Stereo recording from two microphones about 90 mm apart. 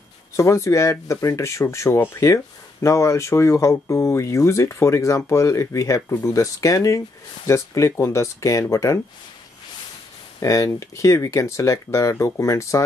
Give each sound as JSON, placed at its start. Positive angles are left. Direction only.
{"t": 0.4, "sound": "speech", "side_deg": 35}
{"t": 10.4, "sound": "speech", "side_deg": 35}